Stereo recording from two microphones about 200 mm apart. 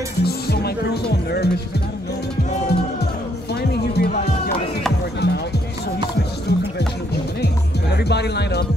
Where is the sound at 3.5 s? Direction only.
55° left (ahead or behind).